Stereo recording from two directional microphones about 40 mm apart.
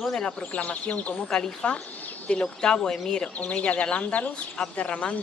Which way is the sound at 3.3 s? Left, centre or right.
Left.